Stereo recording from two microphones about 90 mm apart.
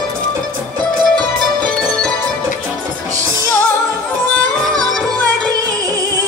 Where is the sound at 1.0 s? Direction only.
50° right (ahead or behind).